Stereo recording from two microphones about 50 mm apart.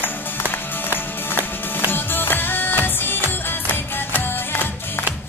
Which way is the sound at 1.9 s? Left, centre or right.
Left.